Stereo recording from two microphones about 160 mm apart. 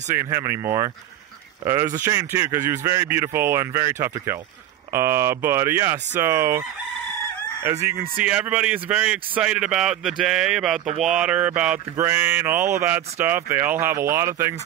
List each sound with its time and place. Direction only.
0.1 s a man's voice: 15° right (ahead or behind)
7.8 s a man's voice: 15° right (ahead or behind)